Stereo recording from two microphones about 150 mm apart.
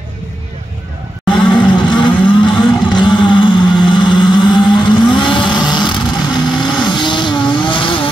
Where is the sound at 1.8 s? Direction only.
30° left (ahead or behind).